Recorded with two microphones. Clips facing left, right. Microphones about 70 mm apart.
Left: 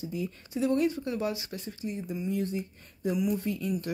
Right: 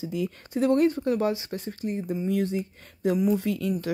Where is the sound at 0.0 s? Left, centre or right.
Right.